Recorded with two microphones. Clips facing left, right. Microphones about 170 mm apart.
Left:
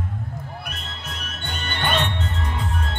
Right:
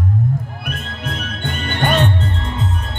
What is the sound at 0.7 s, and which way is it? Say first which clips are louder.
Music: right 9 dB; 55° right (ahead or behind).